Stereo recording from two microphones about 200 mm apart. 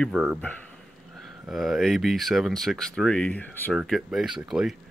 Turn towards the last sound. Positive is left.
turn(degrees=0)  # may be behind; listen again after turning